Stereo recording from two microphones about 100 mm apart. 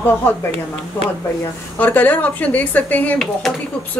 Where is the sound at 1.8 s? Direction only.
15° left (ahead or behind).